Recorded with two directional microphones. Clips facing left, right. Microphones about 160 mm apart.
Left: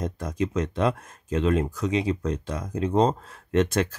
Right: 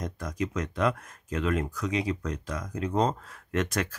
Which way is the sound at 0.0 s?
25° left (ahead or behind).